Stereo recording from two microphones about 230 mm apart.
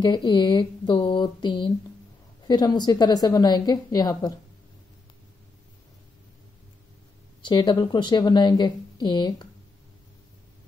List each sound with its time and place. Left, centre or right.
0.0 s a woman's voice: centre
7.4 s speech: centre